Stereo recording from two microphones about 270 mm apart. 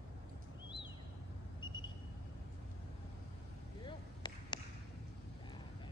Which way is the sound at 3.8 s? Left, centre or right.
Centre.